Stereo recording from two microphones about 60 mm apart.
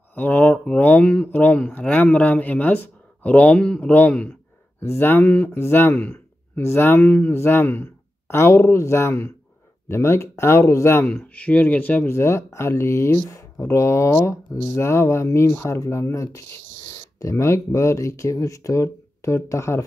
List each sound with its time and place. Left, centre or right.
0.1 s a sound: left
0.7 s speech: left
1.3 s speech: left
3.5 s speech: centre
3.8 s speech: left
4.7 s speech: left
8.3 s speech: left
11.1 s speech: centre
12.1 s speech: left